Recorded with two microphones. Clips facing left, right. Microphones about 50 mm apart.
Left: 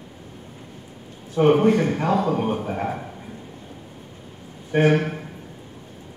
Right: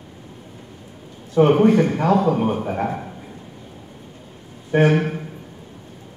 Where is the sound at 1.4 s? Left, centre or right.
Centre.